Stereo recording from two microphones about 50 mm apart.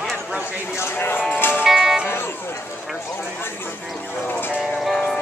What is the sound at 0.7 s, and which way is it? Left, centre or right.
Music, left.